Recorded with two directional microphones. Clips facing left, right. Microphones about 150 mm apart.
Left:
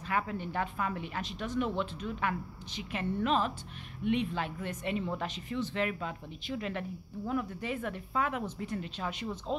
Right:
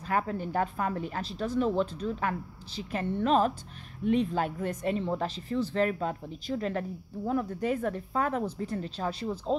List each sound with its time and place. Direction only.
0.0 s speech: 40° right (ahead or behind)